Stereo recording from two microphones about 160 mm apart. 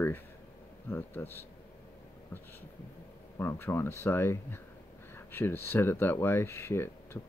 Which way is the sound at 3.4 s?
15° left (ahead or behind).